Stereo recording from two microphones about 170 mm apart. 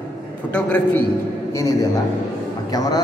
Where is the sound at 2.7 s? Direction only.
25° left (ahead or behind).